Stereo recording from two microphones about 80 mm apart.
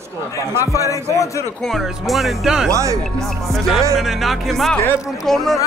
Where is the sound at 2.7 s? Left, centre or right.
Right.